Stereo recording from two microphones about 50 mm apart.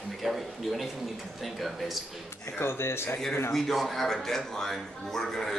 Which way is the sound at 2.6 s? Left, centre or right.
Left.